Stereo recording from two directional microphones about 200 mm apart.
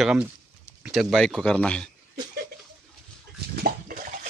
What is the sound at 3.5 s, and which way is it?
Bathtub, 45° right (ahead or behind).